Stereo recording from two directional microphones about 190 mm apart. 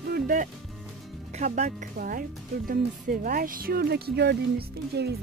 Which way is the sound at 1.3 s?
40° right (ahead or behind).